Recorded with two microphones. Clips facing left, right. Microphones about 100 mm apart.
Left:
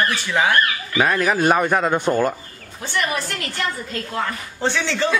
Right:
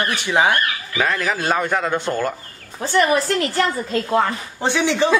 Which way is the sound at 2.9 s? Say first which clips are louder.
Right 7 dB; 30° right (ahead or behind).